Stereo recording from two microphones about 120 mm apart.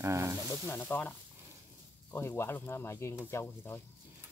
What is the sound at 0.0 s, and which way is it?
Speech, 25° right (ahead or behind).